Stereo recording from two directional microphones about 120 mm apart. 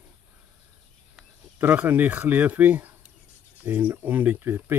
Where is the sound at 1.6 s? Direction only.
15° right (ahead or behind).